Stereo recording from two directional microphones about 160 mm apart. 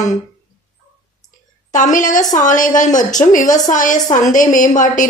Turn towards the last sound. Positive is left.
turn(degrees=55)  # may be behind; listen again after turning